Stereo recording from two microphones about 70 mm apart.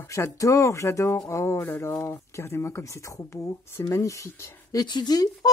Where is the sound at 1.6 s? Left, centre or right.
Left.